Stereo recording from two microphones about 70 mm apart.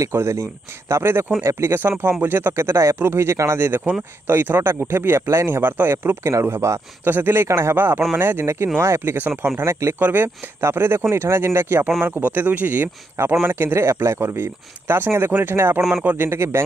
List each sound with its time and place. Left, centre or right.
0.0 s speech: right
9.9 s speech: right
16.3 s speech: right